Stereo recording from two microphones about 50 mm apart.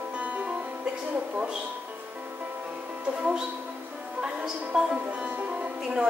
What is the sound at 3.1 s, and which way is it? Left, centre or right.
Speech, centre.